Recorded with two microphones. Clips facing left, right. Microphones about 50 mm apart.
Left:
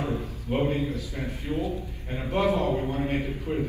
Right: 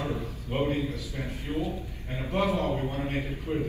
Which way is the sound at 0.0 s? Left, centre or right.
Left.